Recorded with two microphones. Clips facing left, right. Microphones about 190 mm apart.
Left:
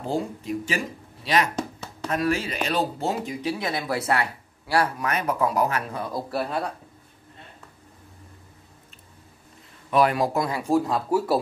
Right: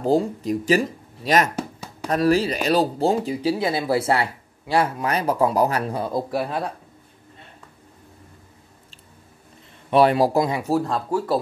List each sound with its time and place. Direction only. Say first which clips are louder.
0.0 s speech: right 8 dB; 40° right (ahead or behind)
1.5 s chopping: right 1 dB; 10° right (ahead or behind)
2.0 s speech: right 6 dB; 35° right (ahead or behind)
6.3 s speech: right 2 dB; 5° right (ahead or behind)
9.8 s speech: right 4 dB; 30° right (ahead or behind)
10.6 s speech: even; centre (ahead or behind)